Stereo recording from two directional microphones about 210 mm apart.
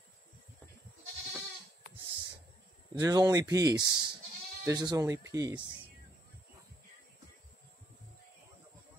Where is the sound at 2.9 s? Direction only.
15° right (ahead or behind).